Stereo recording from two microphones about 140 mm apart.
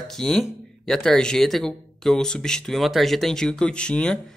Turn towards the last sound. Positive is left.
turn(degrees=5)  # may be behind; listen again after turning